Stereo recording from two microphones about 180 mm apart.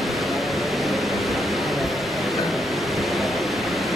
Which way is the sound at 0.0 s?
Centre (ahead or behind).